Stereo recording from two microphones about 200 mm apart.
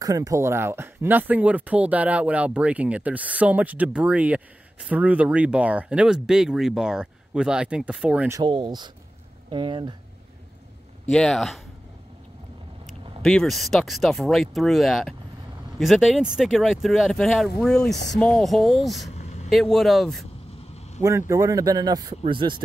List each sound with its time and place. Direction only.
0.0 s speech: 15° right (ahead or behind)
8.4 s speech: 20° right (ahead or behind)
11.1 s speech: 5° left (ahead or behind)
13.2 s speech: centre (ahead or behind)
19.0 s vehicle: 35° left (ahead or behind)
19.5 s speech: centre (ahead or behind)
21.0 s speech: 15° right (ahead or behind)